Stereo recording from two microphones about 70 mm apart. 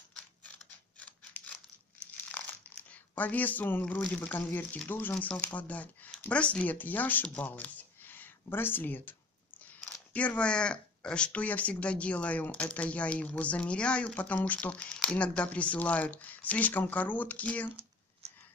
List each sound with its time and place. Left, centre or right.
0.9 s mechanisms: centre
2.3 s crumpling: left
4.1 s speech: centre
10.1 s speech: centre